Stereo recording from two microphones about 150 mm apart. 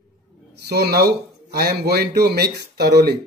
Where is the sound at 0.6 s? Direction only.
90° right.